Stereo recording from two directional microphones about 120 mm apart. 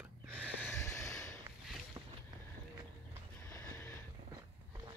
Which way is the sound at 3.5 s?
20° left (ahead or behind).